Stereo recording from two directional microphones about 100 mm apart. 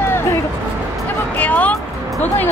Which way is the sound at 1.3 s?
15° left (ahead or behind).